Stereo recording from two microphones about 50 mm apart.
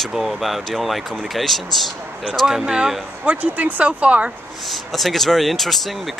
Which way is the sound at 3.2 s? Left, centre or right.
Right.